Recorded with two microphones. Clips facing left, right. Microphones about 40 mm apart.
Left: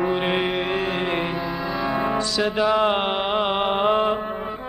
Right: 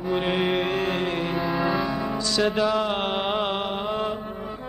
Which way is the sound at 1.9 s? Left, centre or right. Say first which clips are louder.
Left 5 dB; left.